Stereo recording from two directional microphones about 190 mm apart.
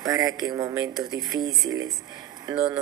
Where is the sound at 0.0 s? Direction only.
20° right (ahead or behind).